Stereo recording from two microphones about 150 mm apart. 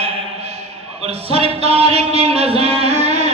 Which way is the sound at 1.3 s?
40° right (ahead or behind).